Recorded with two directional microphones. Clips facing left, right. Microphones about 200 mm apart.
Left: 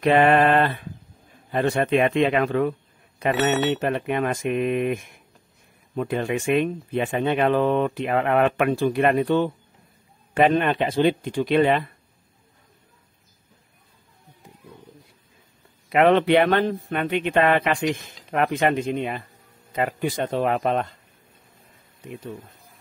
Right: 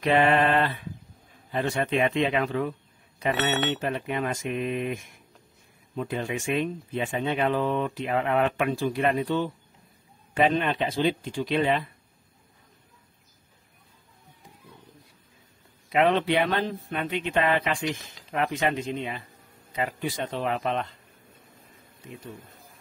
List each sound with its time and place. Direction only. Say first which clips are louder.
0.0 s speech: left 4 dB; 55° left (ahead or behind)
15.9 s speech: left 6 dB; 65° left (ahead or behind); by 20.9 s 50° left (ahead or behind)